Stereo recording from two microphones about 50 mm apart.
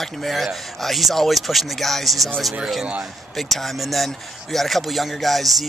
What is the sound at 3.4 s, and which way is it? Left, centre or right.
Speech, centre.